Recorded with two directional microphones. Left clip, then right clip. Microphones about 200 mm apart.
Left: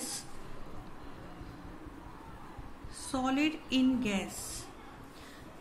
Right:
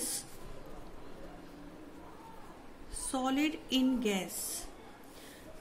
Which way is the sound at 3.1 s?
60° right (ahead or behind).